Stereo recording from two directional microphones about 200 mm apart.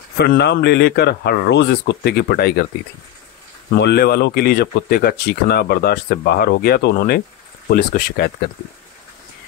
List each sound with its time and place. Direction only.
0.2 s speech: 55° left (ahead or behind)
3.8 s speech: 50° left (ahead or behind)